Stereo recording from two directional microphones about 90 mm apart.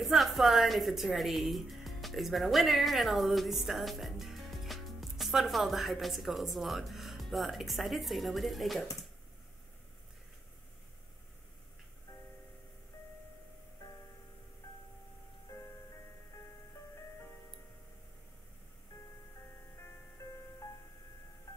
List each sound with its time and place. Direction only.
0.0 s speech: centre (ahead or behind)
15.5 s music: 30° left (ahead or behind)